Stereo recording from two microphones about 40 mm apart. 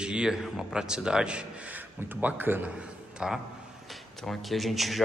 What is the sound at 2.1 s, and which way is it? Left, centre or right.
Speech, right.